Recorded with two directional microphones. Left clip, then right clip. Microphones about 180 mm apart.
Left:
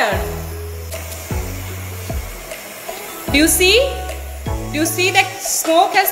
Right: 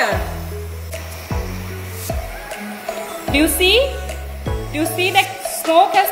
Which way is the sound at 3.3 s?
Centre (ahead or behind).